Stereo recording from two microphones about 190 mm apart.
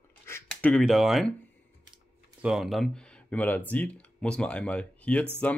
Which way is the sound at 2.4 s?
Centre (ahead or behind).